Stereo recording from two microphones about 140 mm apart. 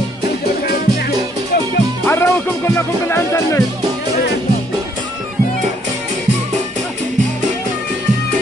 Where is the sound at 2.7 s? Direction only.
20° left (ahead or behind).